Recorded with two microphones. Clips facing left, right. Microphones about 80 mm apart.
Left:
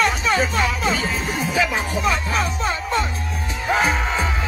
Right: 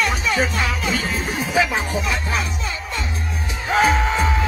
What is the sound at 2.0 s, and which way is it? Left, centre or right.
Music, left.